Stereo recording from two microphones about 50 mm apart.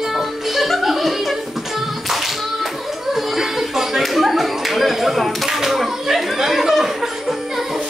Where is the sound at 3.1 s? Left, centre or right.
Centre.